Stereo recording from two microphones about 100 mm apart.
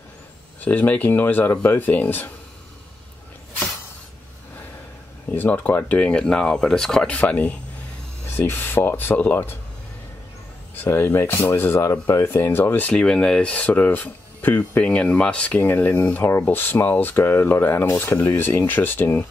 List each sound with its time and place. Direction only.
0.6 s speech: 15° left (ahead or behind)
5.3 s speech: 15° left (ahead or behind)
10.8 s speech: 20° left (ahead or behind)